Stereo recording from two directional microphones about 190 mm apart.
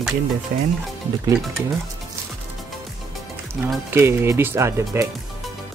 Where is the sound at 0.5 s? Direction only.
50° right (ahead or behind).